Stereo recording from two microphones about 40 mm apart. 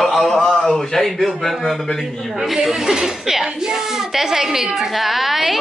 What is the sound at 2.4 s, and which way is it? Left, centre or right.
A man's voice, centre.